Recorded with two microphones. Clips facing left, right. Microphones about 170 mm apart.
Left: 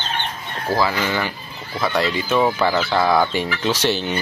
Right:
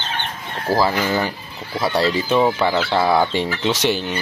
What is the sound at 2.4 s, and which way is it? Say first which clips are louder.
Speech: right 1 dB; 10° right (ahead or behind).